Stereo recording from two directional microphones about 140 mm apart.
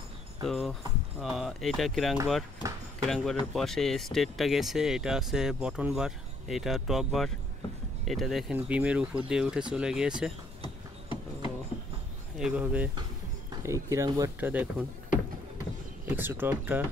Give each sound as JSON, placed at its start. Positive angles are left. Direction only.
{"t": 0.5, "sound": "speech", "side_deg": 0}
{"t": 10.6, "sound": "a sound", "side_deg": 35}
{"t": 12.4, "sound": "speech", "side_deg": -10}
{"t": 13.5, "sound": "speech", "side_deg": -20}
{"t": 14.4, "sound": "speech", "side_deg": -10}
{"t": 16.1, "sound": "speech", "side_deg": -15}